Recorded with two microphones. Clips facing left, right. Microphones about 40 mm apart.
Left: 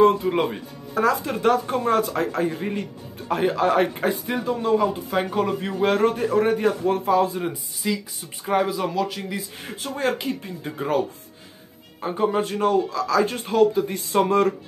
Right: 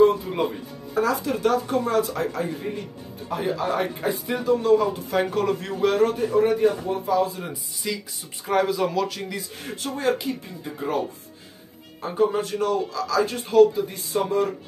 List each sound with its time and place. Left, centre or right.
0.3 s a man's voice: left
4.5 s a man's voice: left
5.9 s a man's voice: left
7.3 s speech: centre
9.9 s speech: left
12.4 s speech: left